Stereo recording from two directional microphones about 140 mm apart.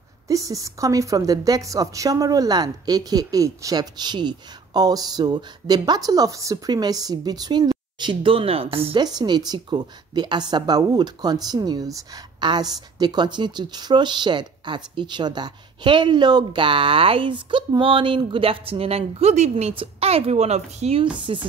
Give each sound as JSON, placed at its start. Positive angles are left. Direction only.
{"t": 0.3, "sound": "a woman's voice", "side_deg": -25}
{"t": 9.0, "sound": "a woman's voice", "side_deg": -30}
{"t": 21.2, "sound": "a woman's voice", "side_deg": -35}